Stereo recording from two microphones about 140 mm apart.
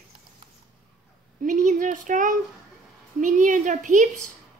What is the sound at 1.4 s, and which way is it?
Speech, 65° right (ahead or behind).